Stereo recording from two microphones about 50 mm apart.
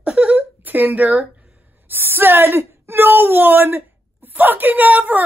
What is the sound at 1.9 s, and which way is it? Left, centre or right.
Speech, right.